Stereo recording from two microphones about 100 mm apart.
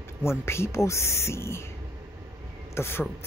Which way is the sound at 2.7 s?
25° left (ahead or behind).